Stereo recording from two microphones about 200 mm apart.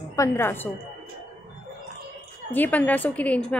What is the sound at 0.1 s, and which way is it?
Speech, 15° left (ahead or behind).